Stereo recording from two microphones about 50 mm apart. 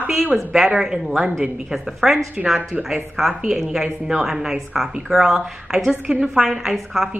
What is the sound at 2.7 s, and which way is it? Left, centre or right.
Speech, right.